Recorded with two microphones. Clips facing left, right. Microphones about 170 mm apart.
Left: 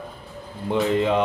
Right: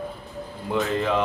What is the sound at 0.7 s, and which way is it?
Speech, 20° left (ahead or behind).